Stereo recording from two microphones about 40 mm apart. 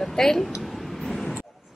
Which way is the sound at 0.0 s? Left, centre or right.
Centre.